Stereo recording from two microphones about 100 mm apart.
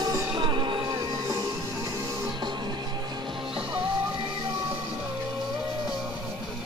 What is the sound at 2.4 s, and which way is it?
Music, 50° right (ahead or behind).